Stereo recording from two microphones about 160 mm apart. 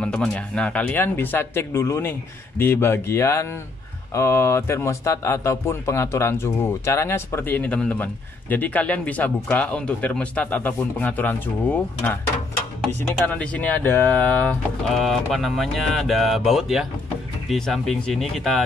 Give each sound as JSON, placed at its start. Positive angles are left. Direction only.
{"t": 0.0, "sound": "speech", "side_deg": 5}